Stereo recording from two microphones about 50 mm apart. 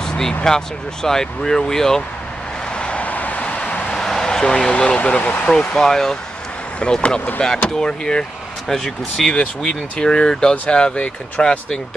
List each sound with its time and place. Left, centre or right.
0.0 s speech: centre
2.8 s vehicle: left
3.9 s speech: centre; by 5.5 s left
5.8 s speech: centre
9.3 s speech: centre